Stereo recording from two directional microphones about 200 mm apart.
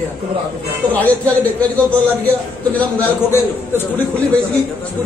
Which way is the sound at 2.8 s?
10° left (ahead or behind).